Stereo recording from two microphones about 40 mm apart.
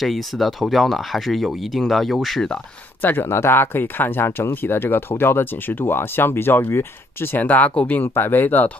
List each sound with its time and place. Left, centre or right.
0.0 s speech: centre
3.0 s speech: left
3.3 s speech: left
7.3 s speech: left